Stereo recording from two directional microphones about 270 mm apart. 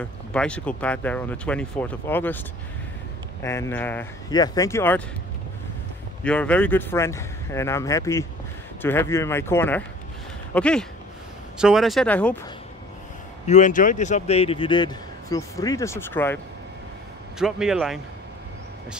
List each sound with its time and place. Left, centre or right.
0.0 s speech: centre
3.4 s a man's voice: centre
6.2 s a man's voice: centre
13.5 s a man's voice: left; by 16.3 s centre
17.4 s speech: centre